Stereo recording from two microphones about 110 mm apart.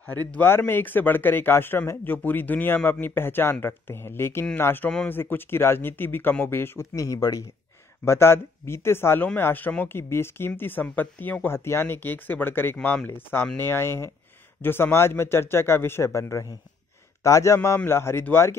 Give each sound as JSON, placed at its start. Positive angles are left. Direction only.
{"t": 0.0, "sound": "speech", "side_deg": 15}